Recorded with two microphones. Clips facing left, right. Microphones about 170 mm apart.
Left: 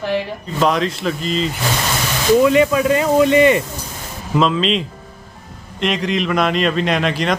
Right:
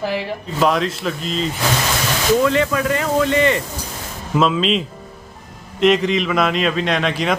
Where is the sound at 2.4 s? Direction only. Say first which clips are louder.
Left 4 dB; 15° left (ahead or behind).